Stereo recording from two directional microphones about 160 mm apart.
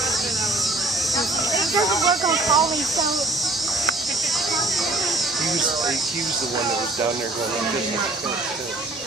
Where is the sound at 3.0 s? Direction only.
Centre (ahead or behind).